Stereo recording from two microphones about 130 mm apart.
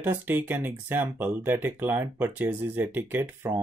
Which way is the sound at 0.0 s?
15° right (ahead or behind).